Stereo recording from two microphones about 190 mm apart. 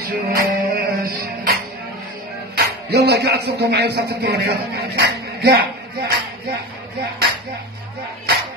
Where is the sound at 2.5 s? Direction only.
60° right (ahead or behind).